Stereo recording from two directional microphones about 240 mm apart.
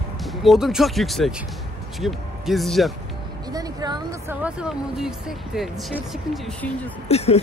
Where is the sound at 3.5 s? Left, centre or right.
Centre.